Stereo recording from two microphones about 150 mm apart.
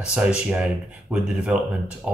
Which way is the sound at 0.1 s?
5° right (ahead or behind).